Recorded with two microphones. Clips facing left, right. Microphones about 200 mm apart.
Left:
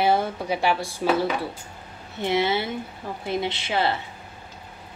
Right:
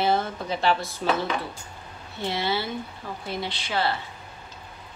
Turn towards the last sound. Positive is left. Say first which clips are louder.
# left 3 dB
turn(degrees=20)  # may be behind; listen again after turning